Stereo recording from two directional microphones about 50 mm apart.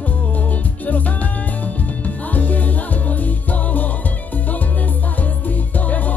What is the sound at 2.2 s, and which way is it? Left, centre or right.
Music, left.